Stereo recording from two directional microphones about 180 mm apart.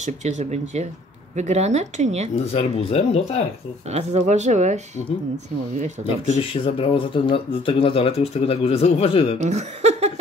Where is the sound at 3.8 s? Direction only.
35° right (ahead or behind).